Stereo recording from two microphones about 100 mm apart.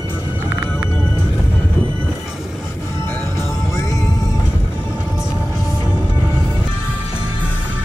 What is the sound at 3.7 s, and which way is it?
Music, 35° left (ahead or behind).